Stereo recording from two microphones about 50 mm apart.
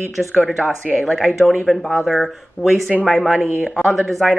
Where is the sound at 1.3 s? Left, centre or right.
Centre.